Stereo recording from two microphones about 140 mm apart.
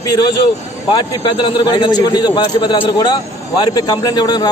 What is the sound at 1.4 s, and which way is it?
A man's voice, 35° left (ahead or behind).